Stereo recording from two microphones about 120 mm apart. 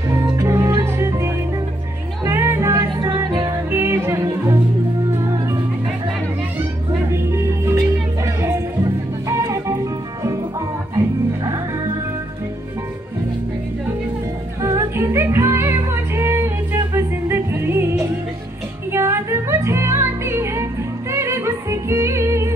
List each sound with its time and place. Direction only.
0.1 s music: 25° right (ahead or behind)
7.1 s music: 25° right (ahead or behind)
11.0 s music: 30° right (ahead or behind)
14.6 s music: 20° right (ahead or behind)